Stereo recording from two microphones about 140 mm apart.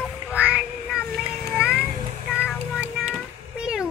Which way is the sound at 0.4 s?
5° right (ahead or behind).